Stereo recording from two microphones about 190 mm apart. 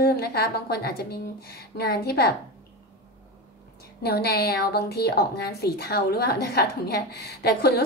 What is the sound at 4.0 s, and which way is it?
A woman's voice, 55° left (ahead or behind).